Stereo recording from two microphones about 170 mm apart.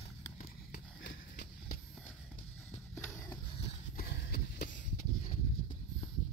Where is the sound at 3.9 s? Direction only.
65° left (ahead or behind).